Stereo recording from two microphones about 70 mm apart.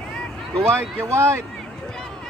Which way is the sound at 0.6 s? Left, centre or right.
Right.